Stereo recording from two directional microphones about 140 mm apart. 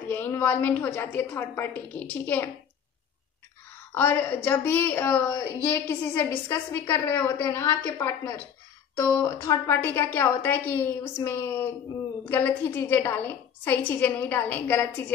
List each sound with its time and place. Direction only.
0.1 s a woman's voice: 15° left (ahead or behind)
3.9 s a woman's voice: 15° left (ahead or behind)